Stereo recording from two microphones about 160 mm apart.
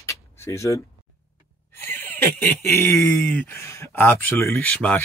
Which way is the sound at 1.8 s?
15° left (ahead or behind).